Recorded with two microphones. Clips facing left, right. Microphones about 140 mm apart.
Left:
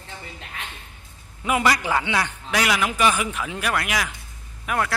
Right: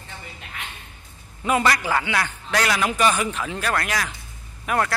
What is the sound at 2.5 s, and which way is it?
Speech, 5° left (ahead or behind).